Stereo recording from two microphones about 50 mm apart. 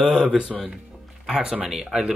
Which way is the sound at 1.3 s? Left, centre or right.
Centre.